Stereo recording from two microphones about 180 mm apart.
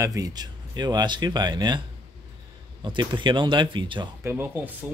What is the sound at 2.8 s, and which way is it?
Speech, 25° right (ahead or behind).